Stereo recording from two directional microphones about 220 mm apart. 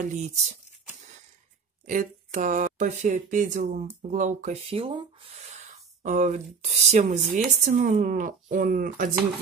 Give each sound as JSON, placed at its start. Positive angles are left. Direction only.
{"t": 0.0, "sound": "speech", "side_deg": -35}
{"t": 1.9, "sound": "speech", "side_deg": -35}